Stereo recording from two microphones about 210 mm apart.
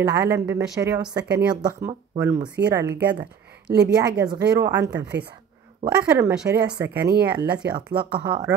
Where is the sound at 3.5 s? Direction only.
50° right (ahead or behind).